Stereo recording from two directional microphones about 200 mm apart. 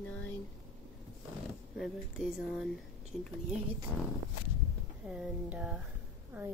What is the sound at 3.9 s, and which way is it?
Speech, centre (ahead or behind).